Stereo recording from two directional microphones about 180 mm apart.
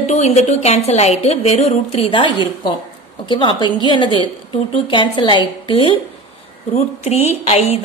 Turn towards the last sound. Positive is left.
turn(degrees=35)  # may be behind; listen again after turning